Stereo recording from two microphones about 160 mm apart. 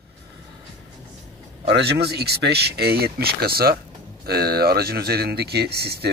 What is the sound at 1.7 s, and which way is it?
Speech, 90° right.